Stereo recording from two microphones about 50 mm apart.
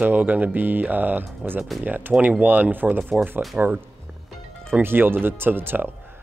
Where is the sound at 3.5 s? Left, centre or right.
Right.